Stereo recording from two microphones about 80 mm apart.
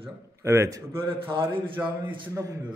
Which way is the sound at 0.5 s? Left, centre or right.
Right.